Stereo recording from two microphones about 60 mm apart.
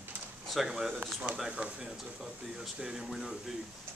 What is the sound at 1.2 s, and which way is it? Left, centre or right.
Speech, centre.